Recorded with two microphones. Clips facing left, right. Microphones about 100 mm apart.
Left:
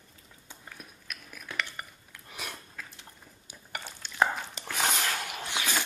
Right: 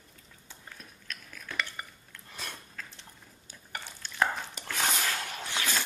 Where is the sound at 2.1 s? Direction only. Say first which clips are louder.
Left 1 dB; 10° left (ahead or behind).